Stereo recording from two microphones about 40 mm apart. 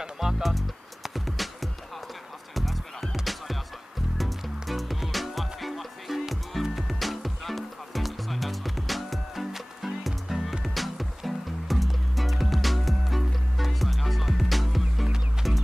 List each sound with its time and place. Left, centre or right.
0.2 s music: centre